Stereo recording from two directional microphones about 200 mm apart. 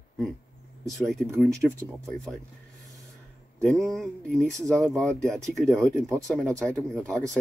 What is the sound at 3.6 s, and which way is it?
Speech, 5° left (ahead or behind).